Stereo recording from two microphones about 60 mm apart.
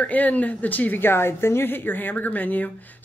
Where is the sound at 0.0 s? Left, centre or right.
Left.